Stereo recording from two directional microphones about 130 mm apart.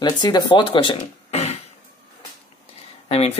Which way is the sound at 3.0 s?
50° left (ahead or behind).